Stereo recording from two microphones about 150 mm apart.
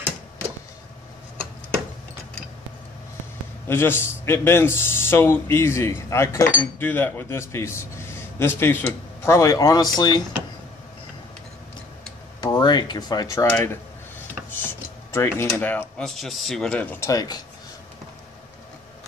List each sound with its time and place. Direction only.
3.6 s speech: 15° left (ahead or behind)
12.4 s a sound: 25° left (ahead or behind)
14.6 s speech: 15° left (ahead or behind)
17.1 s speech: 25° left (ahead or behind)